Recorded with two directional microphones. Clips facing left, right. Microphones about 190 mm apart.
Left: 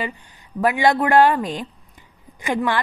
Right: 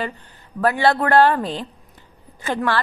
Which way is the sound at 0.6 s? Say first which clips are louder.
Even; 15° left (ahead or behind).